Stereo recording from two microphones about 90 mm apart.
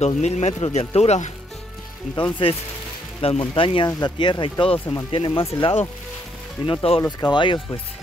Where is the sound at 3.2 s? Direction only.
90° left.